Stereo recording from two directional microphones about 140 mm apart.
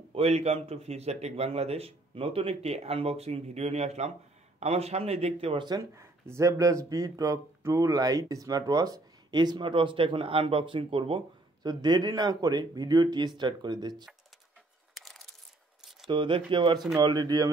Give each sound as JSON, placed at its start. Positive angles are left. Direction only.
{"t": 0.1, "sound": "a man's voice", "side_deg": -45}
{"t": 5.8, "sound": "speech", "side_deg": -20}
{"t": 15.0, "sound": "a sound", "side_deg": 0}
{"t": 16.1, "sound": "speech", "side_deg": -35}